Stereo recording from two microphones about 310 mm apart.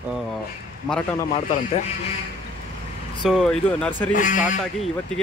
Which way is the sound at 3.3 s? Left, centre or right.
Centre.